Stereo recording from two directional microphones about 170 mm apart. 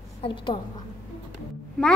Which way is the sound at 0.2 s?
30° left (ahead or behind).